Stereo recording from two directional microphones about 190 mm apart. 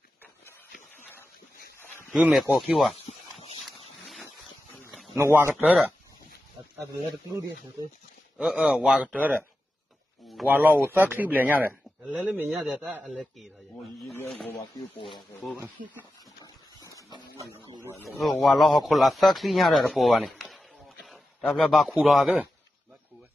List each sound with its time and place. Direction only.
2.1 s speech: centre (ahead or behind)
3.1 s a sound: 35° left (ahead or behind)
3.6 s a sound: centre (ahead or behind)
5.1 s speech: 15° right (ahead or behind)
8.4 s speech: 5° right (ahead or behind)
14.1 s speech: 10° left (ahead or behind)
15.8 s speech: 40° right (ahead or behind)
16.9 s a sound: 15° right (ahead or behind)
18.0 s speech: centre (ahead or behind)